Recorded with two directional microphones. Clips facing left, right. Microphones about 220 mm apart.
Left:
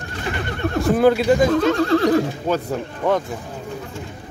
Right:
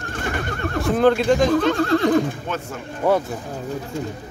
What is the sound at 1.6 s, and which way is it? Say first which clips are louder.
Neigh: left 1 dB; centre (ahead or behind).